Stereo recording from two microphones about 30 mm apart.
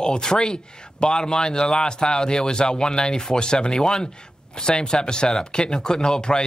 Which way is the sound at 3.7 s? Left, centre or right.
Centre.